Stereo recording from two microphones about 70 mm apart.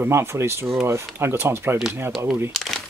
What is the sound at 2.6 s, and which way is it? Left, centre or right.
Crumpling, centre.